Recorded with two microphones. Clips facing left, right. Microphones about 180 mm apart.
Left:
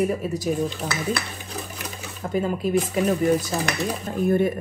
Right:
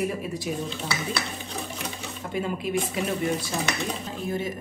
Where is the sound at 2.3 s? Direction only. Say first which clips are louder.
Left 5 dB; 40° left (ahead or behind).